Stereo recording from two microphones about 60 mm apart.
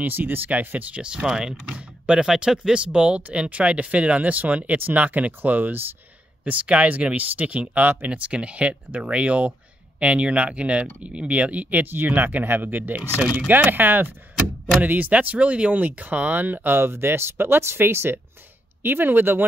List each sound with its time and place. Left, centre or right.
0.0 s speech: right
1.0 s speech: centre; by 5.9 s right
6.4 s speech: right